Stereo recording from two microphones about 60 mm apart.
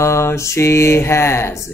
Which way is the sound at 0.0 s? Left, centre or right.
Left.